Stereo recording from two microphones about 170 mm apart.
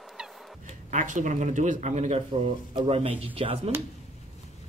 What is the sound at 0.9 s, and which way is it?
Speech, 50° right (ahead or behind).